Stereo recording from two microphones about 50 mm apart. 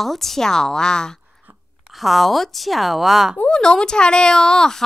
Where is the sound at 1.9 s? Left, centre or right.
Centre.